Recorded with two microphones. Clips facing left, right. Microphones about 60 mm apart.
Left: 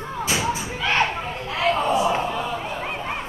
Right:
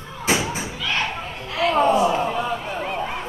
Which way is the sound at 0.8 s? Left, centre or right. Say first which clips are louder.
Left 4 dB; left.